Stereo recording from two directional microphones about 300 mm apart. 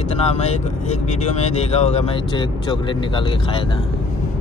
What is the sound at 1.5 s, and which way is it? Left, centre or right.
Speech, left.